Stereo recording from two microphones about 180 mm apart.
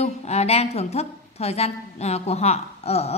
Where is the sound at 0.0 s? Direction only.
35° left (ahead or behind).